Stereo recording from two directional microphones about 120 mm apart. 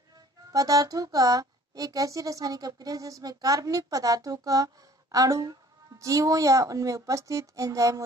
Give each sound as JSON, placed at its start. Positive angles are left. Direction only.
{"t": 0.5, "sound": "speech", "side_deg": -30}